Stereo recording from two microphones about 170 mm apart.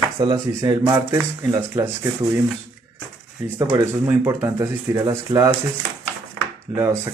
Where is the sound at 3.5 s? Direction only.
15° right (ahead or behind).